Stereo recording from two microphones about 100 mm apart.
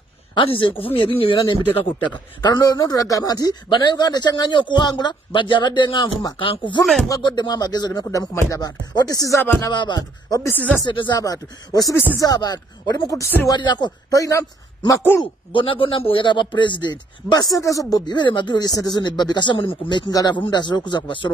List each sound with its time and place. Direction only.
0.3 s speech: 60° left (ahead or behind)
2.0 s speech: 45° left (ahead or behind)
7.1 s speech: 50° left (ahead or behind); by 9.7 s 30° left (ahead or behind)
9.7 s speech: 45° left (ahead or behind)
10.5 s speech: 15° left (ahead or behind)
10.9 s speech: 55° left (ahead or behind)
11.1 s speech: 35° left (ahead or behind)
13.0 s speech: 35° left (ahead or behind)
13.5 s speech: 45° left (ahead or behind)
14.1 s speech: 35° left (ahead or behind)
15.5 s speech: 60° left (ahead or behind)